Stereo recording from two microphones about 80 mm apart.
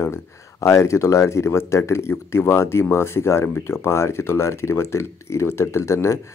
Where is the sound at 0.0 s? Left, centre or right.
Left.